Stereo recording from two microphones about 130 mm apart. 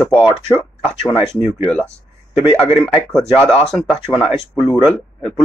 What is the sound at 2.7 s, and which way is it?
Speech, 5° left (ahead or behind).